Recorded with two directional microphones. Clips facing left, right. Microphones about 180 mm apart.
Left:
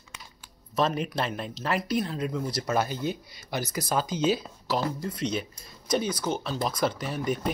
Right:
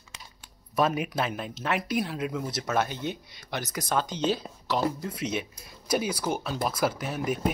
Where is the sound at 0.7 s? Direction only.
5° right (ahead or behind).